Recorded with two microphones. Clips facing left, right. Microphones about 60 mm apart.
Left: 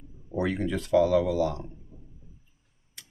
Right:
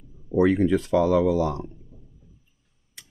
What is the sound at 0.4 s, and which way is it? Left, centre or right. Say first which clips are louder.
Speech: right 9 dB; right.